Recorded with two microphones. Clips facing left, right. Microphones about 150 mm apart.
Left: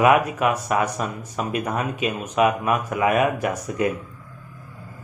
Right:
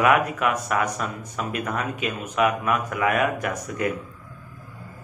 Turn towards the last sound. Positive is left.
turn(degrees=20)  # may be behind; listen again after turning